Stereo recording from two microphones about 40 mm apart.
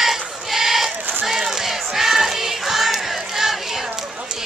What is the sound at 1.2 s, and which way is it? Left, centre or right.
Choir, centre.